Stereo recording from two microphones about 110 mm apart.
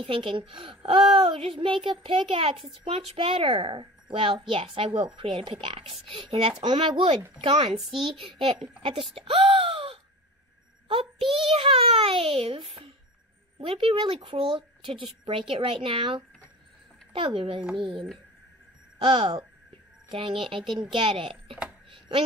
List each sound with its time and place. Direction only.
0.0 s a woman's voice: 55° right (ahead or behind)
10.9 s a sound: 55° right (ahead or behind)
13.6 s a woman's voice: 55° right (ahead or behind)